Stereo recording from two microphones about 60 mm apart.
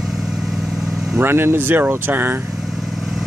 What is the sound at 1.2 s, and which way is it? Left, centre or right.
Speech, right.